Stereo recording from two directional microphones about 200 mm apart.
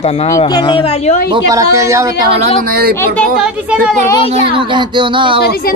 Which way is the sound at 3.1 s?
Centre (ahead or behind).